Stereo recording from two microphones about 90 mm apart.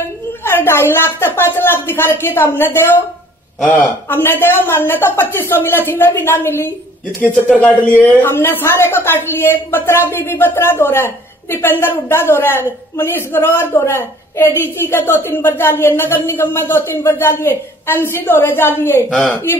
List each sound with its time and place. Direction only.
0.5 s speech: 25° left (ahead or behind)
19.0 s speech: centre (ahead or behind)